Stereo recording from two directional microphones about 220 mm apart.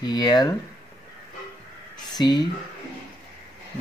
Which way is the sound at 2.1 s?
20° left (ahead or behind).